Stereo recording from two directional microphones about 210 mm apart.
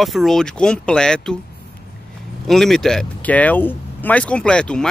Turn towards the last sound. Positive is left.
turn(degrees=5)  # may be behind; listen again after turning